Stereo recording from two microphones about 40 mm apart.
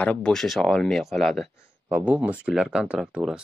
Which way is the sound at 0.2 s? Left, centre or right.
Centre.